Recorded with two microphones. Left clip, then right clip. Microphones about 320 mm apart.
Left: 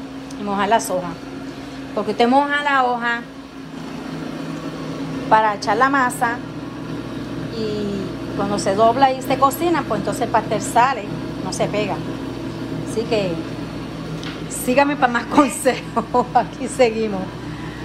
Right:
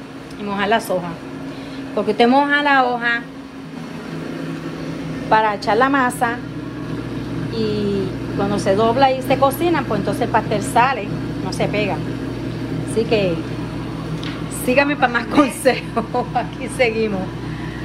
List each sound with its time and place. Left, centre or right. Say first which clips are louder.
0.5 s a woman's voice: left 1 dB; centre
2.0 s a woman's voice: right 2 dB; centre
5.3 s a woman's voice: even; centre
7.5 s vehicle: right 3 dB; centre
8.4 s a woman's voice: even; centre
14.7 s a woman's voice: even; centre